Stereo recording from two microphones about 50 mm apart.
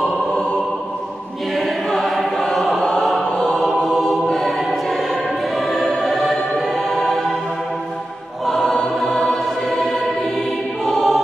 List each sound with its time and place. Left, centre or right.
0.3 s music: centre
2.0 s choir: centre
2.8 s choir: centre
3.4 s chant: centre
3.7 s choir: centre
5.7 s music: centre
8.5 s choir: centre
9.1 s music: centre
10.9 s choir: centre